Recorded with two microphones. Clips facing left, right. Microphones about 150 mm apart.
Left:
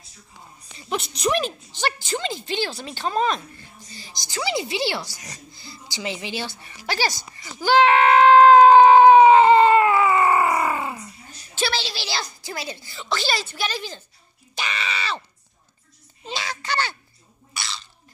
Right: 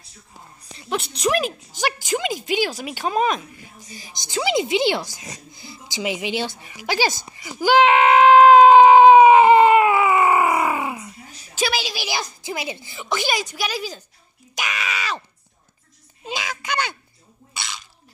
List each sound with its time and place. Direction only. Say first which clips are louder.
0.7 s a woman's voice: right 1 dB; centre (ahead or behind)
2.0 s a woman's voice: right 4 dB; 15° right (ahead or behind)
7.2 s screaming: right 3 dB; 15° right (ahead or behind)
14.5 s speech: right 1 dB; 10° right (ahead or behind)
16.3 s a sound: right 1 dB; 10° right (ahead or behind)